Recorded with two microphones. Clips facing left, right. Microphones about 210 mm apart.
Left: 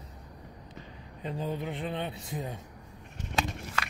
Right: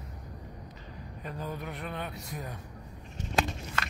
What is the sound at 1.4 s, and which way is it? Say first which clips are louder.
Speech: left 4 dB; 30° left (ahead or behind).